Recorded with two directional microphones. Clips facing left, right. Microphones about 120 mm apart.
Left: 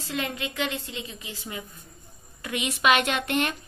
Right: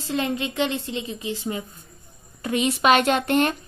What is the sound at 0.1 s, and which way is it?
A woman's voice, 30° right (ahead or behind).